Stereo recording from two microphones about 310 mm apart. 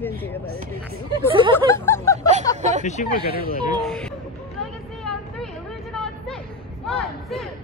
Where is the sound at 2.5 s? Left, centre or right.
Right.